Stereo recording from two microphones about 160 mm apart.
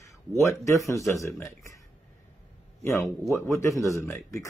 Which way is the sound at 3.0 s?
Centre (ahead or behind).